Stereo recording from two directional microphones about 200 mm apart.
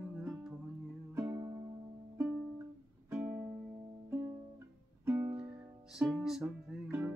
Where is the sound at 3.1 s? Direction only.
5° right (ahead or behind).